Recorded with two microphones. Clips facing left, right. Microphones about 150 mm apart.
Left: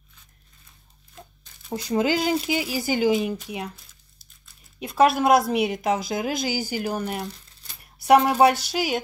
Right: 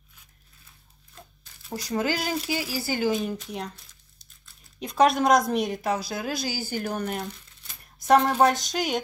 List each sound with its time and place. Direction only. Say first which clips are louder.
1.7 s a woman's voice: left 4 dB; 20° left (ahead or behind); by 9.0 s 5° left (ahead or behind)